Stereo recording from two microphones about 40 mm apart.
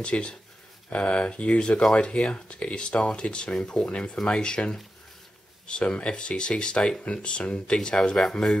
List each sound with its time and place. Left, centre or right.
0.0 s speech: left
3.8 s speech: left; by 8.5 s centre